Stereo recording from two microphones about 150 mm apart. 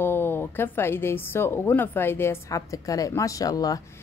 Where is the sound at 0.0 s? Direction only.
15° left (ahead or behind).